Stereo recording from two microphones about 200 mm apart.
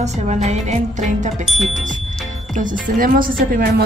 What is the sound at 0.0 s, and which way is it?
Speech, 35° right (ahead or behind).